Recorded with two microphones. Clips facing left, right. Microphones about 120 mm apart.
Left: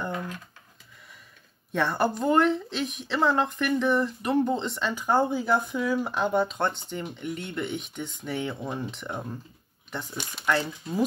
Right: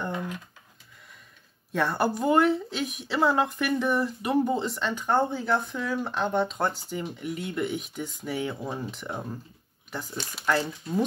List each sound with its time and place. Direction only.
1.7 s a woman's voice: centre (ahead or behind)